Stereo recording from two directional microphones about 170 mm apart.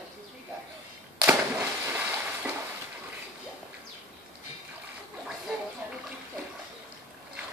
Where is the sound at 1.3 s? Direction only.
10° right (ahead or behind).